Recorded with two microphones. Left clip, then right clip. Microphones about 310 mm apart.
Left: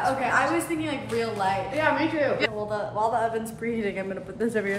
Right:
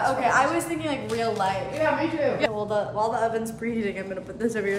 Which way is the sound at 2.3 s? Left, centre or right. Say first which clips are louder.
Right 2 dB; centre.